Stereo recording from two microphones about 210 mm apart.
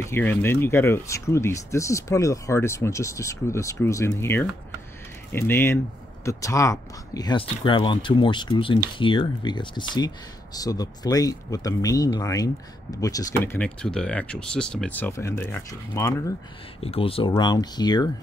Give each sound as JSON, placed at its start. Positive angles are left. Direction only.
{"t": 0.0, "sound": "speech", "side_deg": 10}
{"t": 13.4, "sound": "speech", "side_deg": 5}
{"t": 16.8, "sound": "speech", "side_deg": 25}